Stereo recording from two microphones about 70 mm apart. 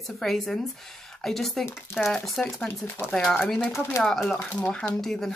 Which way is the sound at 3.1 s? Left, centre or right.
Centre.